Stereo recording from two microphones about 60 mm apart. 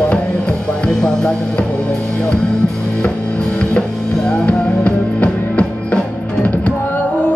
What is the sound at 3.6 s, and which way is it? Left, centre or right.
Music, centre.